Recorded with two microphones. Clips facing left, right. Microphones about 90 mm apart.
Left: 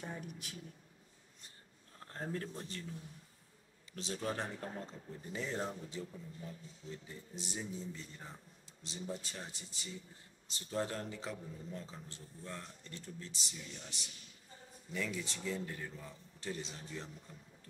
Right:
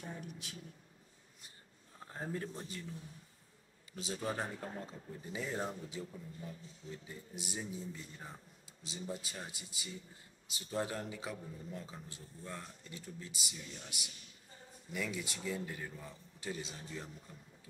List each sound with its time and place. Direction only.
0.0 s speech: 50° left (ahead or behind)
2.0 s a man's voice: 10° right (ahead or behind)
3.9 s a man's voice: 10° right (ahead or behind)